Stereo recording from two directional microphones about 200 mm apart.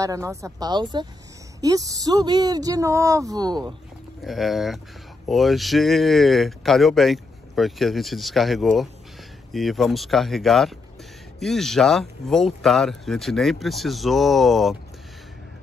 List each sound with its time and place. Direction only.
0.0 s speech: 15° right (ahead or behind)
4.2 s speech: centre (ahead or behind)